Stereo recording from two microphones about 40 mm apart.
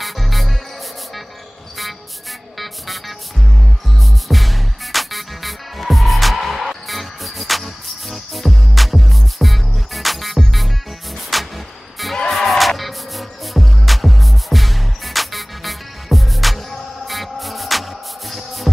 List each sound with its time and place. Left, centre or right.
0.0 s music: centre
2.5 s music: centre